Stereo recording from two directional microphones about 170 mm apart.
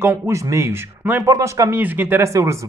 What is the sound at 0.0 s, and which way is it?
A man's voice, 15° right (ahead or behind).